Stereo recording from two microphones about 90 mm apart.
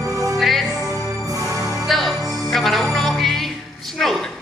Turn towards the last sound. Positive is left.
turn(degrees=5)  # may be behind; listen again after turning